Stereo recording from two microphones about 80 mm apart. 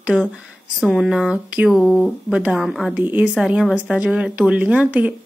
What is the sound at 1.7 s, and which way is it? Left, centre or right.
Speech, centre.